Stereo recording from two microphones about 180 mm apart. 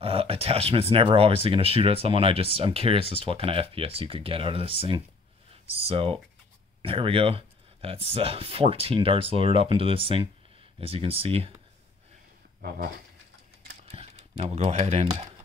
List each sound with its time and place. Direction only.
0.0 s speech: 30° right (ahead or behind)
12.6 s speech: 60° right (ahead or behind)
13.9 s speech: 35° right (ahead or behind)